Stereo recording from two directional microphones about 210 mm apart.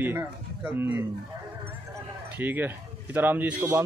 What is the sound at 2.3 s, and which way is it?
Speech, 10° right (ahead or behind).